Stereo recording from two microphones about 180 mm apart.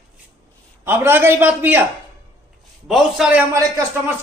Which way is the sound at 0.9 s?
15° right (ahead or behind).